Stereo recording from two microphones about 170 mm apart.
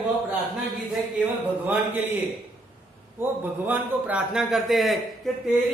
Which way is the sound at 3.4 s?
10° right (ahead or behind).